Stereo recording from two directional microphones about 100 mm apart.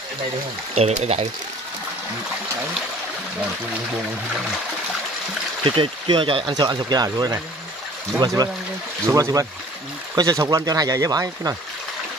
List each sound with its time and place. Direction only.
0.7 s speech: 90° right
5.6 s speech: 60° right (ahead or behind)
6.5 s speech: 45° right (ahead or behind)
8.4 s speech: 40° right (ahead or behind)